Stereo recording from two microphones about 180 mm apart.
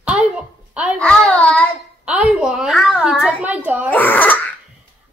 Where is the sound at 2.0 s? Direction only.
5° right (ahead or behind).